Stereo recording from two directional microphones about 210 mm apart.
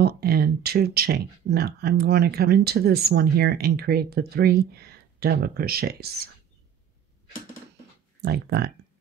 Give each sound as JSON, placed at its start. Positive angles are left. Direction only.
{"t": 0.0, "sound": "speech", "side_deg": -50}
{"t": 8.2, "sound": "speech", "side_deg": -50}